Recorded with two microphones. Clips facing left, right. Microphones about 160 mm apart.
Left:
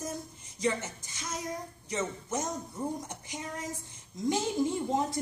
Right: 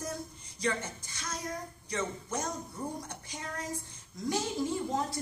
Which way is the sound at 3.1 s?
20° left (ahead or behind).